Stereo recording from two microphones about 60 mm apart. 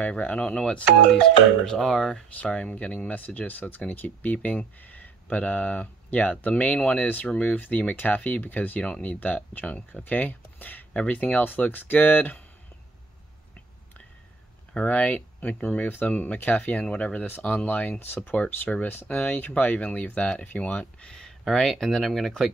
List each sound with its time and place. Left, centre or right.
0.0 s speech: left
1.7 s speech: centre
2.3 s speech: centre
14.9 s speech: left
18.3 s speech: left
21.5 s speech: centre